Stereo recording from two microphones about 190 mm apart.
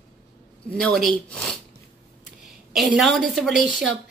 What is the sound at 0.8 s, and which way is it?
Speech, centre (ahead or behind).